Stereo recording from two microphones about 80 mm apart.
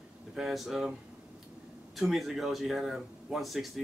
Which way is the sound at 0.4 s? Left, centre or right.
Centre.